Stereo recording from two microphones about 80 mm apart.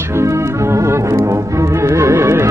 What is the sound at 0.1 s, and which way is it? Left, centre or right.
Music, right.